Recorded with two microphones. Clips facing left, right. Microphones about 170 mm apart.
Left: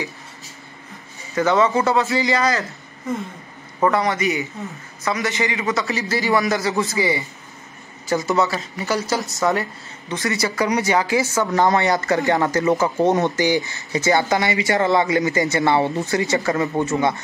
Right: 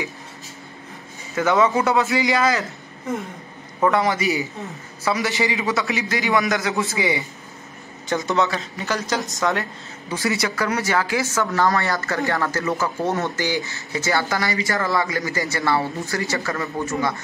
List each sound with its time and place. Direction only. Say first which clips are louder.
1.3 s a man's voice: left 1 dB; centre (ahead or behind)
3.8 s a man's voice: even; centre (ahead or behind)
10.5 s speech: left 3 dB; 15° left (ahead or behind)